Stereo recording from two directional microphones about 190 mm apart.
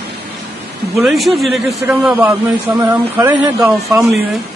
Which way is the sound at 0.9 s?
Centre (ahead or behind).